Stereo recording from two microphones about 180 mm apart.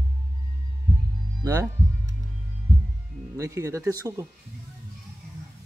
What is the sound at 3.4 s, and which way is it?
Speech, 15° right (ahead or behind).